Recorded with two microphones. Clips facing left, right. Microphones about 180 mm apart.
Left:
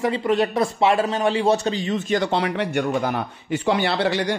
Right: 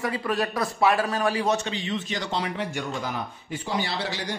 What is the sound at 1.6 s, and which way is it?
Speech, 40° left (ahead or behind).